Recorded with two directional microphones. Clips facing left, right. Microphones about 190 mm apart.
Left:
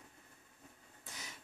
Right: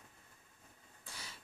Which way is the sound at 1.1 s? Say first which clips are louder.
Left 1 dB; 20° left (ahead or behind).